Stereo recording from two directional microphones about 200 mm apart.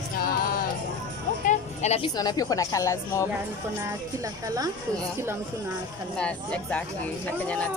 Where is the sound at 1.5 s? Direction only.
35° left (ahead or behind); by 3.3 s 15° left (ahead or behind).